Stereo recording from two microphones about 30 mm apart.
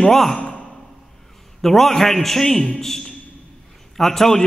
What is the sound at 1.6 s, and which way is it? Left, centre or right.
A man's voice, centre.